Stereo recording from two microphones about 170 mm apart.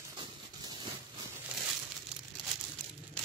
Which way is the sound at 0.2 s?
25° right (ahead or behind).